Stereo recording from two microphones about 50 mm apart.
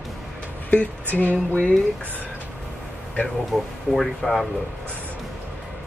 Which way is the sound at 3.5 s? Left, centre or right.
Centre.